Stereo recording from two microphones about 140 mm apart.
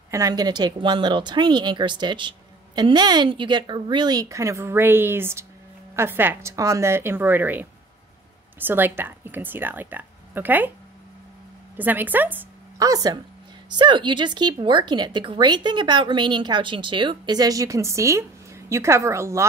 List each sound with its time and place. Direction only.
0.1 s a woman's voice: 25° right (ahead or behind)
11.7 s a woman's voice: 10° right (ahead or behind)
12.7 s a woman's voice: 25° right (ahead or behind)